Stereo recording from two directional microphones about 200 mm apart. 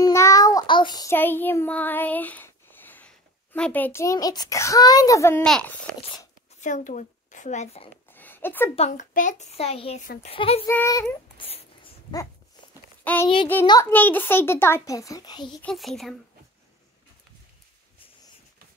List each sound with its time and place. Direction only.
0.0 s child singing: 15° left (ahead or behind)
3.5 s a child's voice: 5° left (ahead or behind)
5.4 s speech: 5° left (ahead or behind)
6.6 s speech: 40° left (ahead or behind)
8.1 s a sound: 10° left (ahead or behind)
8.7 s a child's voice: 35° left (ahead or behind)
10.7 s a child's voice: 15° left (ahead or behind)
11.3 s a sound: 25° left (ahead or behind)
13.0 s a child's voice: 10° left (ahead or behind)
15.6 s speech: centre (ahead or behind)